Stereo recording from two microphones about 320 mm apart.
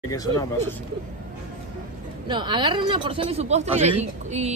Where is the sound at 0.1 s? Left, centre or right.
Centre.